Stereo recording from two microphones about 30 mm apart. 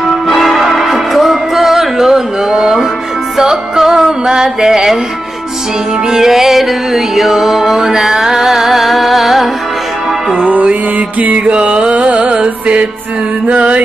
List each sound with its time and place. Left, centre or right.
0.1 s music: centre
6.2 s music: centre
10.5 s music: right
13.5 s mantra: right